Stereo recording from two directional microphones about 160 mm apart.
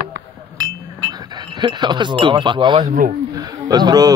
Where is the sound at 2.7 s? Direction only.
55° right (ahead or behind).